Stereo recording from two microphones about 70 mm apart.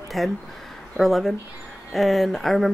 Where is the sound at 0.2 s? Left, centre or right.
Centre.